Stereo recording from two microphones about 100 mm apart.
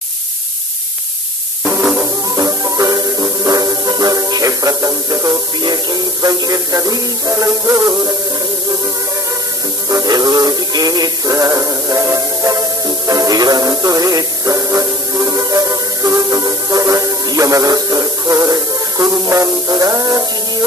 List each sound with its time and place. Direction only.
1.6 s music: 15° right (ahead or behind)
2.3 s music: 35° right (ahead or behind)
5.6 s synthetic singing: 45° right (ahead or behind)
9.8 s synthetic singing: 40° right (ahead or behind)